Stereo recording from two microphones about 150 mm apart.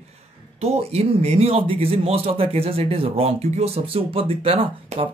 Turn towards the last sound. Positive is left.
turn(degrees=-40)  # may be behind; listen again after turning